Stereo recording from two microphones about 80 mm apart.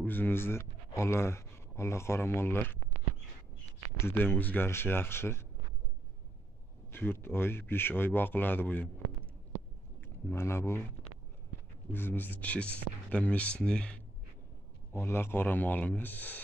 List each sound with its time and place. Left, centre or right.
0.0 s speech: left
4.0 s speech: left
6.9 s speech: left
10.0 s speech: left
11.9 s speech: left
14.9 s speech: left